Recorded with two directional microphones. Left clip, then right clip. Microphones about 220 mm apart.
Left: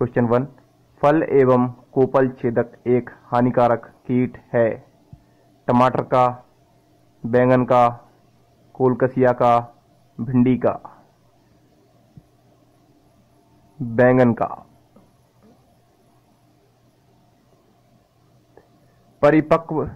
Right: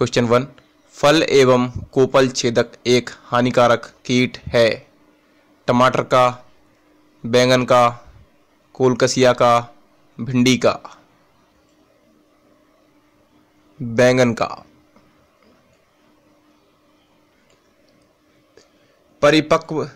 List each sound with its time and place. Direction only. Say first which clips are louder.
0.0 s a man's voice: right 3 dB; 30° right (ahead or behind)
13.9 s speech: right 1 dB; 25° right (ahead or behind)
19.1 s speech: right 1 dB; 25° right (ahead or behind)